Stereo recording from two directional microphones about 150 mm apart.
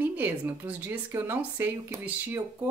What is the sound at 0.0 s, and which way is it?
Speech, 15° right (ahead or behind).